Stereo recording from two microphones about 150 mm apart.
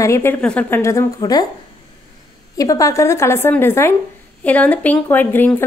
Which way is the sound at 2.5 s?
25° left (ahead or behind).